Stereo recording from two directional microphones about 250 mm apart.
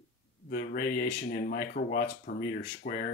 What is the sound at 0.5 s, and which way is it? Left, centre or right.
Speech, left.